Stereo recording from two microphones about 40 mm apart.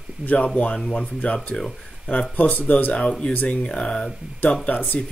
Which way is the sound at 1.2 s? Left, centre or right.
Left.